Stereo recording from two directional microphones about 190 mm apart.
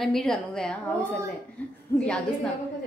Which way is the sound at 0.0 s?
Centre (ahead or behind).